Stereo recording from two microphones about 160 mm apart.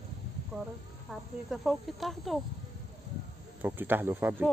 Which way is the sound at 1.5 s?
Centre (ahead or behind).